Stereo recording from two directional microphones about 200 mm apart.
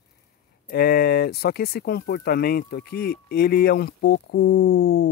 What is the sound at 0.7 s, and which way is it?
Speech, 50° left (ahead or behind).